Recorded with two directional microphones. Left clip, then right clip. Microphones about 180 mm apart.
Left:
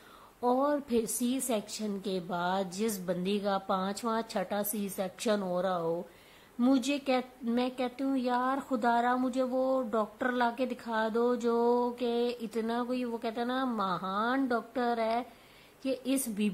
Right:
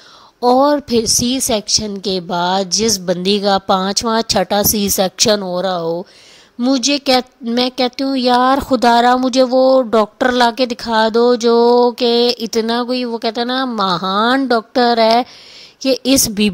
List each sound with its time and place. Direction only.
0.4 s a woman's voice: 55° right (ahead or behind)